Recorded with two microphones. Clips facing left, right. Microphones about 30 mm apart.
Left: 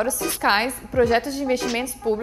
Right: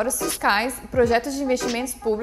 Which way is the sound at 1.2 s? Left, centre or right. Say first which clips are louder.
Even; left.